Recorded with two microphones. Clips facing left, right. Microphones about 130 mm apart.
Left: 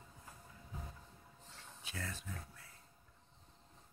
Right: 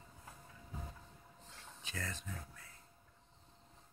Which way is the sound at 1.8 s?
10° left (ahead or behind).